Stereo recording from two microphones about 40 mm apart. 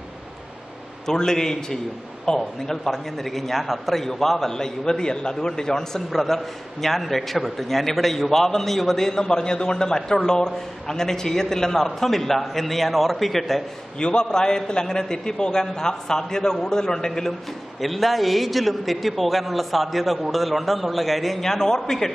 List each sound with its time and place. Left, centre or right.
1.0 s a man's voice: centre
13.9 s a man's voice: left
17.7 s a man's voice: centre